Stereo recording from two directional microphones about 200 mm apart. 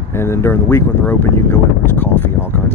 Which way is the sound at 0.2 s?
10° left (ahead or behind).